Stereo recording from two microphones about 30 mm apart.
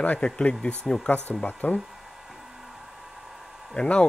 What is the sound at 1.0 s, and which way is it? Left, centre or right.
Speech, left.